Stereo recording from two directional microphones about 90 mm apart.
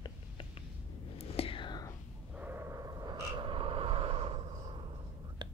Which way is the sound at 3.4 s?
70° right (ahead or behind).